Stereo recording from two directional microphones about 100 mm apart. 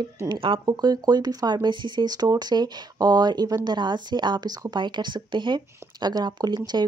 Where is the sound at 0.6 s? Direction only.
40° right (ahead or behind).